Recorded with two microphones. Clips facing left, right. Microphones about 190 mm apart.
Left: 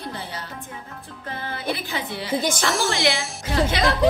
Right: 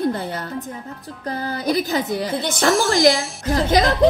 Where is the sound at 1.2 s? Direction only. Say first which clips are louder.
Right 6 dB; 40° right (ahead or behind).